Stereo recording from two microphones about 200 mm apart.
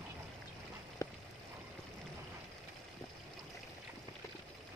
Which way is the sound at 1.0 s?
15° left (ahead or behind).